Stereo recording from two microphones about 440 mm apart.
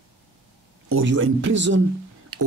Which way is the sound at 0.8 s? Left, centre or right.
Right.